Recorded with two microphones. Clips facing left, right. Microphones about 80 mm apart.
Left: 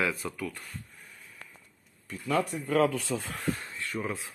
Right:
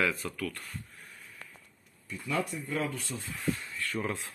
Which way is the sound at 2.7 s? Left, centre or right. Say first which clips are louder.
Left 8 dB; left.